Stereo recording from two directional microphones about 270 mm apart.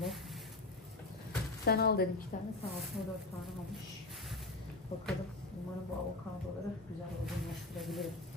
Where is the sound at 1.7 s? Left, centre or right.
Left.